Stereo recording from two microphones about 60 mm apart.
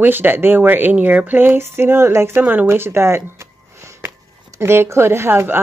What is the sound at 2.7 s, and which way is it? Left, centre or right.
Speech, right.